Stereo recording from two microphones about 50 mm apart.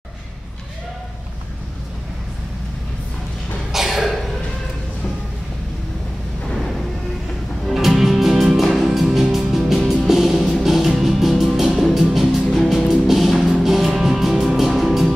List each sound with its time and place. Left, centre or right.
3.7 s cough: centre
7.6 s music: centre